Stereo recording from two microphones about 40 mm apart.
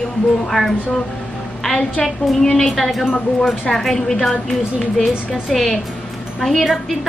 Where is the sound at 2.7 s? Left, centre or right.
Centre.